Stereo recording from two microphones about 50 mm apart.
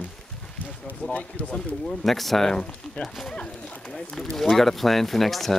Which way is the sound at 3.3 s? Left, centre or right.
Left.